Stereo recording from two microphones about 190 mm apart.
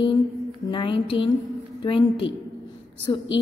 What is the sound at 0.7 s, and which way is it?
A woman's voice, 25° left (ahead or behind).